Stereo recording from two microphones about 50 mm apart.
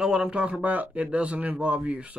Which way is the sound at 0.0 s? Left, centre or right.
Centre.